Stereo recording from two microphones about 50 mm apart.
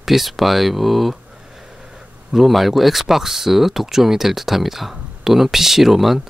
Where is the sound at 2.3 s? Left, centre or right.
Centre.